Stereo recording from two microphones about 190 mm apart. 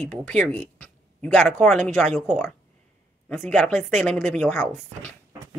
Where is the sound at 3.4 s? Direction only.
5° left (ahead or behind).